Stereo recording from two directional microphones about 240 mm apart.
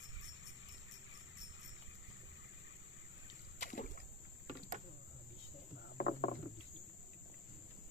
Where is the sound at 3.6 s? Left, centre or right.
Left.